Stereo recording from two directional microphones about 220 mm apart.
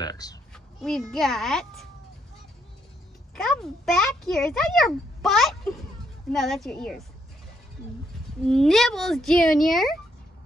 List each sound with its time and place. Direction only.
0.0 s a sound: 15° left (ahead or behind)
0.7 s a child's voice: centre (ahead or behind)
3.3 s a child's voice: centre (ahead or behind)
8.5 s a child's voice: centre (ahead or behind)